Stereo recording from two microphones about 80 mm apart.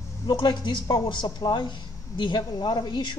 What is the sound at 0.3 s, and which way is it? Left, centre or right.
A man's voice, left.